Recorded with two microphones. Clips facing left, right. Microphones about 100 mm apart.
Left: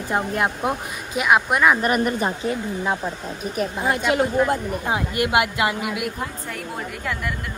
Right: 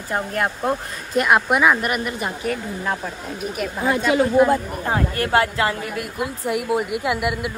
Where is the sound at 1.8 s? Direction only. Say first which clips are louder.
Left 3 dB; 35° left (ahead or behind).